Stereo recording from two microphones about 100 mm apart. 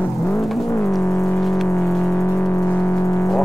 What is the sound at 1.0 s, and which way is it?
Music, 30° left (ahead or behind).